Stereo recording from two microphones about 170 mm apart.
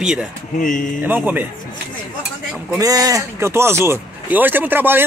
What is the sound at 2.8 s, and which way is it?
Speech, 20° right (ahead or behind).